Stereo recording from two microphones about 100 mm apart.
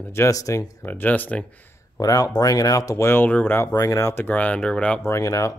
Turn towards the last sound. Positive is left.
turn(degrees=35)  # may be behind; listen again after turning